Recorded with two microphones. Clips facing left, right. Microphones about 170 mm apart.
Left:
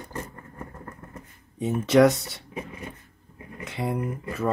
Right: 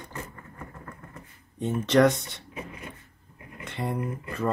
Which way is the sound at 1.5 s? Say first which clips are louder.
Left 3 dB; 5° left (ahead or behind).